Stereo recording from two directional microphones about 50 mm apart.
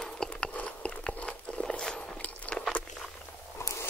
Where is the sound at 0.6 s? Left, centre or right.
Left.